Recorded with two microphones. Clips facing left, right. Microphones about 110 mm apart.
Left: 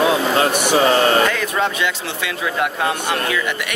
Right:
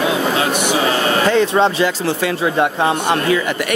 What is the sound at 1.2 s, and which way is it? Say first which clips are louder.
Speech: right 6 dB; 30° right (ahead or behind).